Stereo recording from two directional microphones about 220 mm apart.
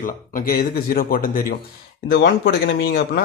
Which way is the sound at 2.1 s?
50° left (ahead or behind).